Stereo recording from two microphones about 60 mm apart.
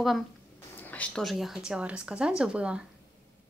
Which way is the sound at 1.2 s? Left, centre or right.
Centre.